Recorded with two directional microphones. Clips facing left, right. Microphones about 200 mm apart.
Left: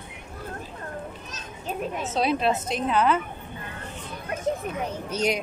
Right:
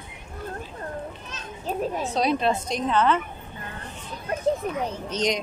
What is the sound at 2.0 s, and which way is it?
Speech, 5° left (ahead or behind).